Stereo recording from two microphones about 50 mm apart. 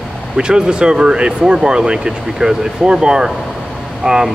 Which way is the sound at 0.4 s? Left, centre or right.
Centre.